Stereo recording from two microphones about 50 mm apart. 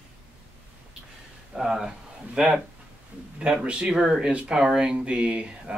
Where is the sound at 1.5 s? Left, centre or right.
Centre.